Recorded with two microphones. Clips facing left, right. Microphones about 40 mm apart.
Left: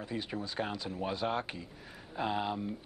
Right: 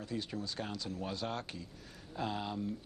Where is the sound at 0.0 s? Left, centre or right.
Left.